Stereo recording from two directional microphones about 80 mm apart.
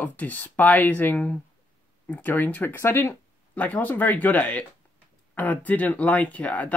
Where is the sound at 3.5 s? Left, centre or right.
Left.